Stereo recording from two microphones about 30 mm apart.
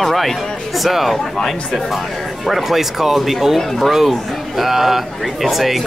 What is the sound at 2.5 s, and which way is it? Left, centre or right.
Speech, centre.